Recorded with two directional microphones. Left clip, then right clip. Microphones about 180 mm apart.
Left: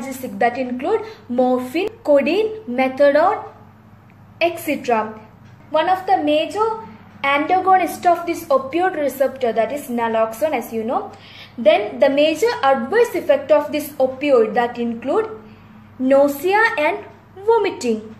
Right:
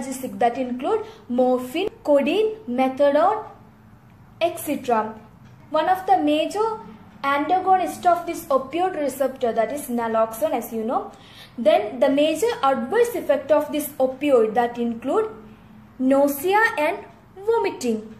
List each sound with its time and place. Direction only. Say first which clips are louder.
0.1 s a woman's voice: left 3 dB; centre (ahead or behind)
4.4 s a woman's voice: left 4 dB; centre (ahead or behind)
5.7 s a woman's voice: left 2 dB; 10° right (ahead or behind)
7.2 s a woman's voice: left 4 dB; centre (ahead or behind)
7.4 s a woman's voice: left 4 dB; 15° left (ahead or behind)
8.3 s a woman's voice: left 4 dB; centre (ahead or behind)